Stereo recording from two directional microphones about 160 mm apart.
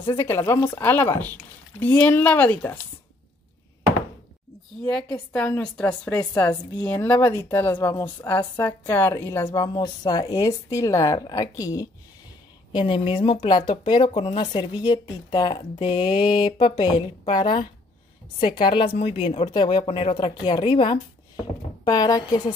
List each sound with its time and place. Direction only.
0.2 s a woman's voice: 15° left (ahead or behind)
4.8 s a woman's voice: 5° left (ahead or behind); by 11.9 s 20° left (ahead or behind)
12.7 s speech: 30° left (ahead or behind)